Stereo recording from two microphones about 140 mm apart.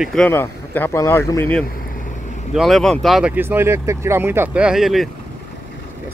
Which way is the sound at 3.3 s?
15° right (ahead or behind).